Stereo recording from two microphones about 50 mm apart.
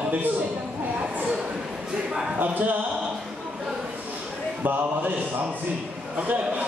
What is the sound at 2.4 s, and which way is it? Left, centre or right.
Speech, right.